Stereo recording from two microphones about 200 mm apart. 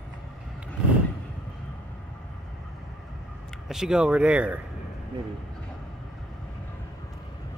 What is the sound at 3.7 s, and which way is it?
Speech, 5° right (ahead or behind).